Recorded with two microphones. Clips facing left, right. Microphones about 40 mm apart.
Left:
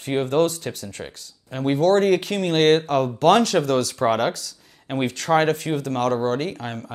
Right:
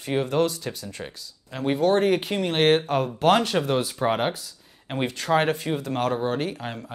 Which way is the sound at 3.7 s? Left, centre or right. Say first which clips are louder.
Left 3 dB; left.